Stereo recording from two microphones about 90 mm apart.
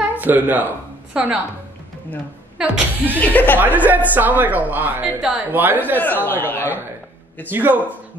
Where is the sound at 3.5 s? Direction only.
20° right (ahead or behind).